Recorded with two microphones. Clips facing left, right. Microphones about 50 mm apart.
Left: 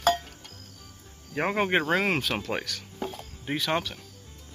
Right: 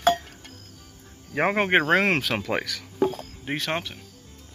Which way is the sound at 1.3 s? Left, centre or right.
Right.